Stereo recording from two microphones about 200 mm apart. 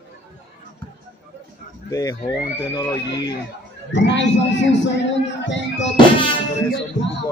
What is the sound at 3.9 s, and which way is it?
Speech, 65° left (ahead or behind).